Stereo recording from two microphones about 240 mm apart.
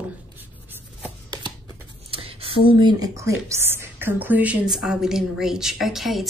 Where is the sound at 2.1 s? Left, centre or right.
Right.